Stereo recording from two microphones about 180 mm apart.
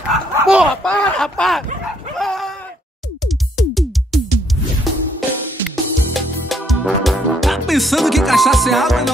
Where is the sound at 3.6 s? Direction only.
Centre (ahead or behind).